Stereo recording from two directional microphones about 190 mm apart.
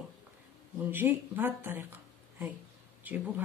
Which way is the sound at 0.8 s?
10° right (ahead or behind).